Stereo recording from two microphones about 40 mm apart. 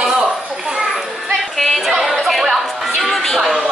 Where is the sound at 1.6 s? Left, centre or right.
Centre.